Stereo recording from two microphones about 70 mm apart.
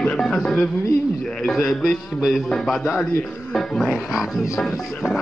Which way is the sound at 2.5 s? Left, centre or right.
Centre.